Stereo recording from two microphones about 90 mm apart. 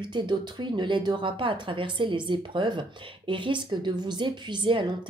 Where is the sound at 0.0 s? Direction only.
60° right (ahead or behind).